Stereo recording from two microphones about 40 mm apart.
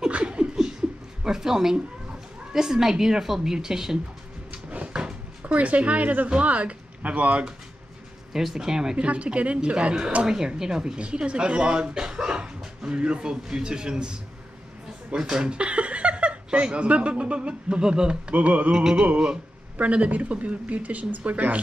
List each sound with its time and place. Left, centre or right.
0.1 s laughter: right
1.2 s speech: centre
4.5 s cupboard open or close: right
5.4 s speech: right
8.3 s speech: centre
8.9 s speech: right
18.3 s speech: right
18.7 s speech: centre
19.8 s speech: right